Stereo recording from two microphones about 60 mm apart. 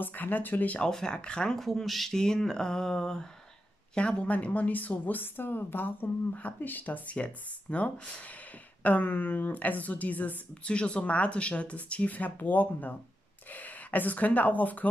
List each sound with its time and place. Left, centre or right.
0.0 s speech: left
0.7 s a woman's voice: centre; by 14.9 s left